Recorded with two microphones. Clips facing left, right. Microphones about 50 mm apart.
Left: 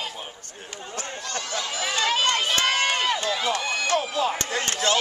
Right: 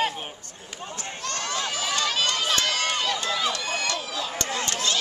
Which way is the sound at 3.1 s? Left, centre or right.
Left.